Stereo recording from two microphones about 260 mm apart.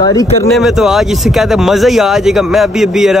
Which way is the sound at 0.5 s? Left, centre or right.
Centre.